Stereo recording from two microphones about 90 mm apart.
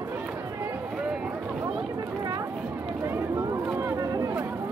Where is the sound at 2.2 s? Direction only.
40° right (ahead or behind).